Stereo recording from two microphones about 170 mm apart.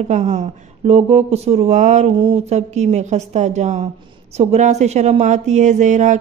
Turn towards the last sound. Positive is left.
turn(degrees=-45)  # may be behind; listen again after turning